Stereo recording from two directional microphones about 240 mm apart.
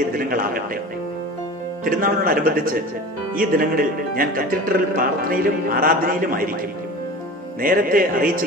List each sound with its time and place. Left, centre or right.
0.1 s speech: right
1.9 s speech: right
7.6 s speech: right